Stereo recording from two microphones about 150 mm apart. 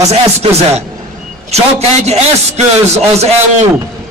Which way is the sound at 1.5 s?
45° right (ahead or behind).